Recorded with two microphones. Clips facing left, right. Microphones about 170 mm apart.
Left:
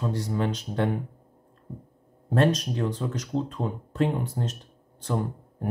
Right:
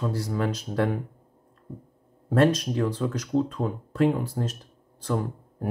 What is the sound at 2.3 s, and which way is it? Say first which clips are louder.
Speech: right 2 dB; 30° left (ahead or behind).